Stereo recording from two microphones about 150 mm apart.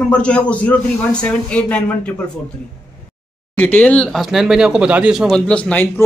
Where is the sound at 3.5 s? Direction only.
10° left (ahead or behind).